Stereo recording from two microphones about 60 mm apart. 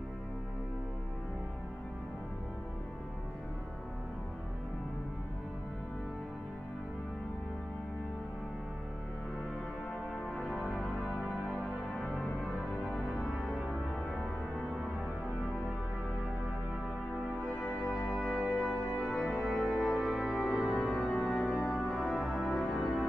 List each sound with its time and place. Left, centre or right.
10.2 s music: centre
12.0 s music: centre
17.8 s music: centre
18.7 s music: left
19.0 s music: centre
20.7 s organ: centre
21.9 s music: centre